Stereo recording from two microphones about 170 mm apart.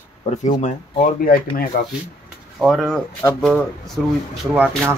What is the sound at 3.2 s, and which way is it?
Speech, 20° left (ahead or behind).